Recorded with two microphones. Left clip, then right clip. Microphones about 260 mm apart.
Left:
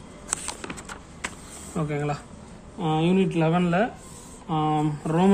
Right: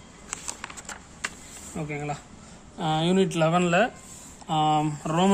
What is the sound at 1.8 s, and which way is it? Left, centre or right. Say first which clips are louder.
Speech: left 4 dB; centre.